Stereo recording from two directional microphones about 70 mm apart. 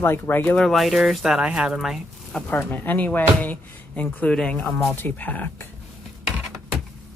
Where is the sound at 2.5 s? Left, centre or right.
Left.